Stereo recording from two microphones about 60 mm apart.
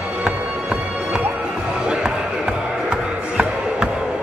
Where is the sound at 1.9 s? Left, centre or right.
Centre.